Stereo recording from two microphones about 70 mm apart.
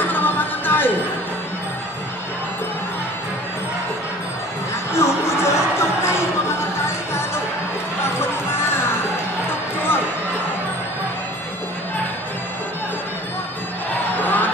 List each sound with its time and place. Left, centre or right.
0.0 s music: left
4.9 s music: left
14.1 s crowd: left